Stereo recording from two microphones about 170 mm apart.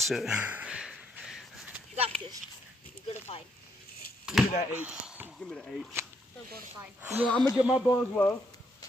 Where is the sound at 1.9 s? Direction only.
35° right (ahead or behind).